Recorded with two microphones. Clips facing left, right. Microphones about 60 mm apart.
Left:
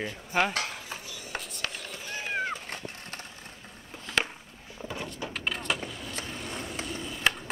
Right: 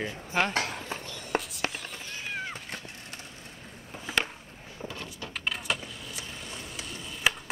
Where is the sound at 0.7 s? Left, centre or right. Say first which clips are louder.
Right 3 dB; centre.